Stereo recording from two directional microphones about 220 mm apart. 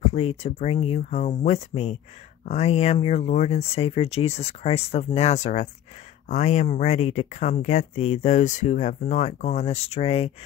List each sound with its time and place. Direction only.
0.0 s speech: 25° left (ahead or behind)